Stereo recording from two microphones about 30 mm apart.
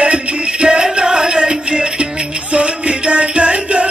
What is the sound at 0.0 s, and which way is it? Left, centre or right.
Music, right.